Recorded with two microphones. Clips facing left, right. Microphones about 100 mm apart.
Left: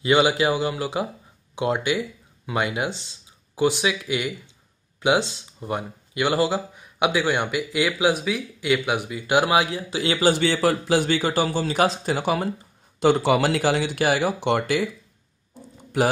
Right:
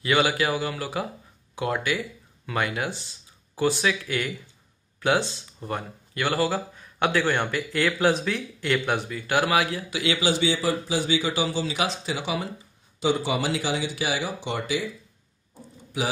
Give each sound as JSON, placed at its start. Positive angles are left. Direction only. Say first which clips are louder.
{"t": 0.0, "sound": "speech", "louder": "left 4 dB", "side_deg": 20}
{"t": 10.4, "sound": "speech", "louder": "left 4 dB", "side_deg": 60}
{"t": 13.0, "sound": "speech", "louder": "left 6 dB", "side_deg": 65}